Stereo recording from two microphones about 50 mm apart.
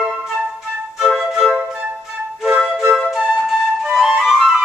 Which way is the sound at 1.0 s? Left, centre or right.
Centre.